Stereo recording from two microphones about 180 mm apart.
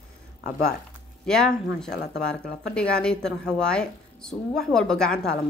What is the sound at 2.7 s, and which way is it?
A woman's voice, 5° left (ahead or behind).